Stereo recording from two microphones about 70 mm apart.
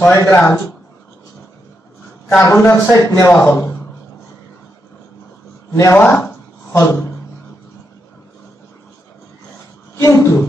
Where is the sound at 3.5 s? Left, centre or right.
Left.